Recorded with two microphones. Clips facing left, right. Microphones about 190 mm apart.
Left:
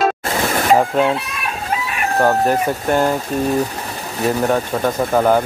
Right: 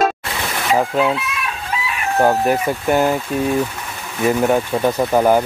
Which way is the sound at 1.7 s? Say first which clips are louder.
Left 3 dB; 50° left (ahead or behind).